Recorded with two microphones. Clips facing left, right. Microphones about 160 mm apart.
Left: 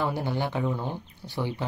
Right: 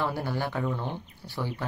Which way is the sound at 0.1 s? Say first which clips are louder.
Left 2 dB; 20° left (ahead or behind).